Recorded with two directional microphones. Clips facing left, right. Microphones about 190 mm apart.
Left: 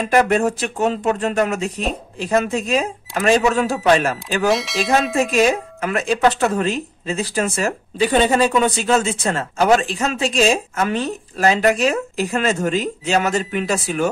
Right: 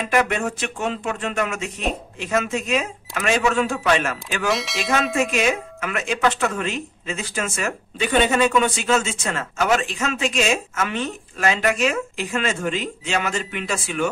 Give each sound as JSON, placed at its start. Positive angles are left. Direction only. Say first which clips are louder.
{"t": 0.1, "sound": "speech", "louder": "left 6 dB", "side_deg": 35}
{"t": 4.5, "sound": "speech", "louder": "left 4 dB", "side_deg": 0}
{"t": 5.1, "sound": "speech", "louder": "left 4 dB", "side_deg": 35}